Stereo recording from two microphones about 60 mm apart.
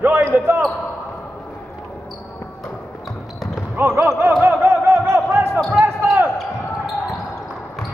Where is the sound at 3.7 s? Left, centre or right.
Right.